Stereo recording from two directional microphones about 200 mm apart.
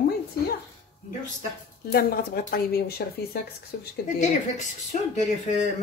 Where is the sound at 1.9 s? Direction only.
50° left (ahead or behind).